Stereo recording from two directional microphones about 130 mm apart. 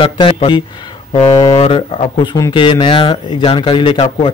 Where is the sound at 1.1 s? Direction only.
50° left (ahead or behind).